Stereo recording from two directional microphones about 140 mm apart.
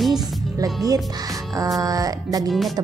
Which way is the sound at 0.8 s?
25° right (ahead or behind).